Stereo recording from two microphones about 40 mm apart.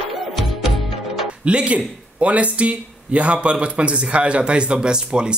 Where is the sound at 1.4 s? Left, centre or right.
Right.